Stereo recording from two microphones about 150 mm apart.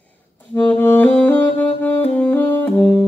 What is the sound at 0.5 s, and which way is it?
Saxophone, 10° left (ahead or behind).